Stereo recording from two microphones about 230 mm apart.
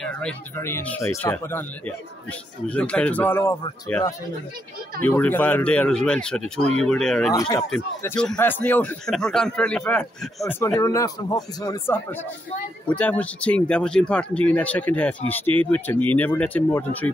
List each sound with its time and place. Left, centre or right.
0.0 s speech: centre
5.0 s speech: centre
7.3 s speech: centre